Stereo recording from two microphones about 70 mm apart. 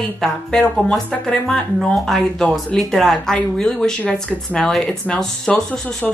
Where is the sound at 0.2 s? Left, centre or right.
Centre.